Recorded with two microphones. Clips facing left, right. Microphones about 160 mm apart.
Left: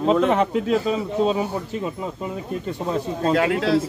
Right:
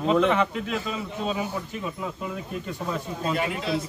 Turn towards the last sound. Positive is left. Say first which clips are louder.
# left 8 dB
turn(degrees=90)